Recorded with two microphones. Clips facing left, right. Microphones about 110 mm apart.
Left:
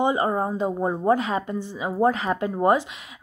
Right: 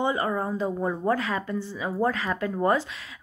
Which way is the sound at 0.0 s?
20° left (ahead or behind).